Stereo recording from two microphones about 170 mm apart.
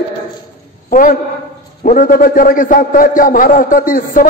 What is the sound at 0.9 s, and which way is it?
A man's voice, 55° left (ahead or behind).